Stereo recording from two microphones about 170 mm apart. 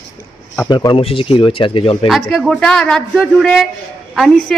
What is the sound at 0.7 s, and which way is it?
Speech, 25° left (ahead or behind).